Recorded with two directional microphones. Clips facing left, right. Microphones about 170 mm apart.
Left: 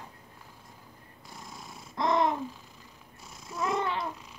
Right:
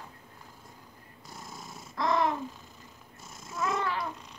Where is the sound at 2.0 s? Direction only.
20° left (ahead or behind).